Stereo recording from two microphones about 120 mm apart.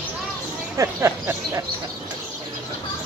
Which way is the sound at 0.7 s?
25° right (ahead or behind).